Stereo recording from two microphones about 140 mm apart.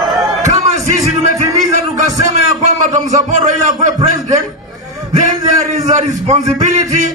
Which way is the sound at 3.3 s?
60° right (ahead or behind).